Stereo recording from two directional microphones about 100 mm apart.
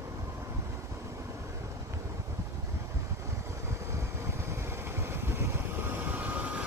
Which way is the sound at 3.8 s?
30° right (ahead or behind).